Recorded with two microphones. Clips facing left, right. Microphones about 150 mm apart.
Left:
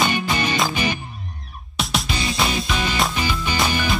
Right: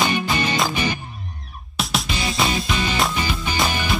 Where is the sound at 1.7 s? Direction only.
Centre (ahead or behind).